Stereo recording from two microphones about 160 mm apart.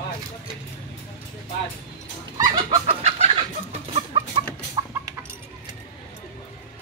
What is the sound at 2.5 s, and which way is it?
Chicken, 45° right (ahead or behind).